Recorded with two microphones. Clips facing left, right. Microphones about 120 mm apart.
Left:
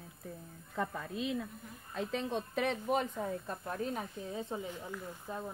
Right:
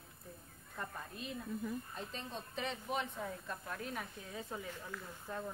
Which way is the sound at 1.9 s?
80° left.